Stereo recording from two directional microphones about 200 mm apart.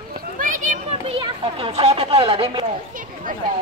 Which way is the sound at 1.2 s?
25° right (ahead or behind).